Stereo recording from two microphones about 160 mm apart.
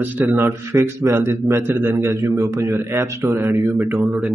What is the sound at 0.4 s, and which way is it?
A man's voice, 15° right (ahead or behind).